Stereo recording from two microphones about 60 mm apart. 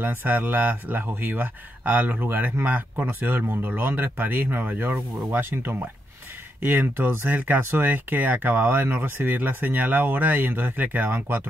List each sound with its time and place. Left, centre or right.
0.0 s speech: right